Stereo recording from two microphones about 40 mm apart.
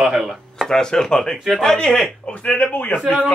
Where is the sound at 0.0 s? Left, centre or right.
Centre.